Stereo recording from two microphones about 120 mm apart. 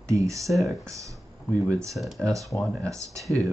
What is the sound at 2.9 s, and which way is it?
Speech, 25° right (ahead or behind).